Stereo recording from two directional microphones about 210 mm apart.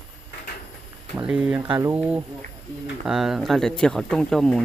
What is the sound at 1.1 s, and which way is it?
Speech, 5° right (ahead or behind).